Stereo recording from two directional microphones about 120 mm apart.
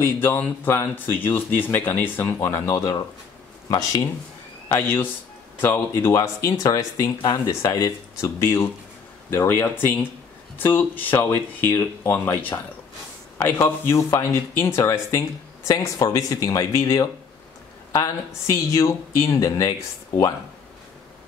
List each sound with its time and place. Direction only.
0.0 s speech: 20° left (ahead or behind)
4.6 s speech: 20° left (ahead or behind)